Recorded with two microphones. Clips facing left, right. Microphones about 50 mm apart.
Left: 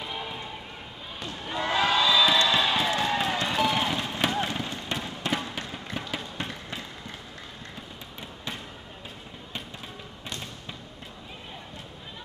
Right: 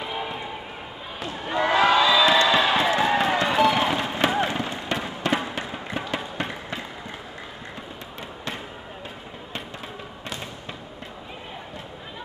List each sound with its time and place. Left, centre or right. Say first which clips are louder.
0.0 s run: right 5 dB; centre
1.2 s basketball bounce: right 6 dB; centre
3.0 s run: right 6 dB; centre
4.3 s fireworks: right 5 dB; centre
5.5 s music: right 5 dB; centre
6.3 s basketball bounce: right 5 dB; centre